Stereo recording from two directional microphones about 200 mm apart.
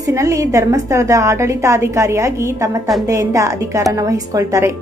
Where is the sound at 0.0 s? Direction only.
15° right (ahead or behind).